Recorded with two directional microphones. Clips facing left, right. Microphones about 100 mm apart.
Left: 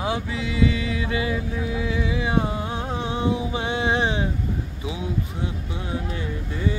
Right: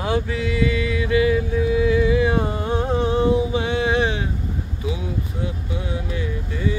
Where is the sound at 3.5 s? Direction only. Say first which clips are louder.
Right 3 dB; 25° left (ahead or behind).